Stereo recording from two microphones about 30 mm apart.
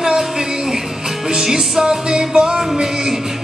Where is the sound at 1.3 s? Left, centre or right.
Right.